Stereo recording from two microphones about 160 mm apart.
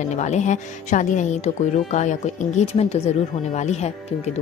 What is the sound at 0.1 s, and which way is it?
A woman's voice, 45° left (ahead or behind).